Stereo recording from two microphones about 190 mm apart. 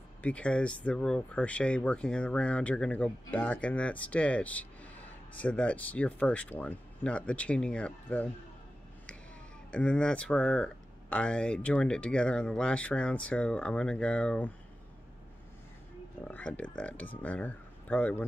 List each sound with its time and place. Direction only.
0.2 s speech: 5° left (ahead or behind)
9.7 s speech: 5° left (ahead or behind)
16.3 s speech: 10° left (ahead or behind)